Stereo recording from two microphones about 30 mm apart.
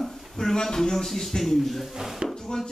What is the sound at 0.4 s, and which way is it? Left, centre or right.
Speech, centre.